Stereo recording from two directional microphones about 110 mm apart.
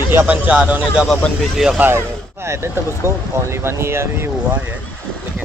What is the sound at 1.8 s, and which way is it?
Speech, 20° right (ahead or behind).